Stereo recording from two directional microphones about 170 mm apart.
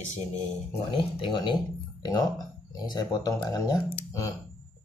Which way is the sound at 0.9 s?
30° left (ahead or behind).